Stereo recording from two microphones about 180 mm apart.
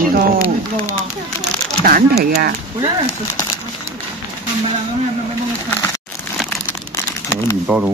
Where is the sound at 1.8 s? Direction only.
55° right (ahead or behind).